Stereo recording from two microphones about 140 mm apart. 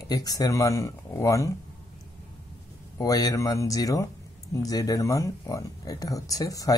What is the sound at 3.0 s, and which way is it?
A man's voice, 25° left (ahead or behind).